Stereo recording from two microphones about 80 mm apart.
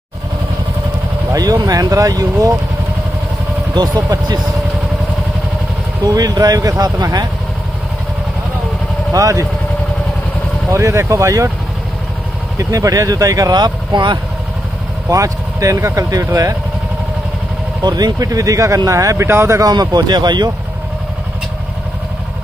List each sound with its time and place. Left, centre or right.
1.3 s speech: right
6.0 s speech: right
9.1 s speech: right
10.7 s speech: right
12.5 s speech: right
15.0 s speech: right
17.8 s speech: right
19.6 s speech: right